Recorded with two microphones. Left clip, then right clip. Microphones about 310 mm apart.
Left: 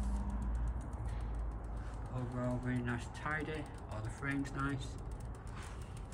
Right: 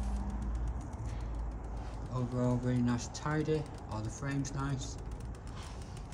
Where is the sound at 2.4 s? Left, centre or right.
Centre.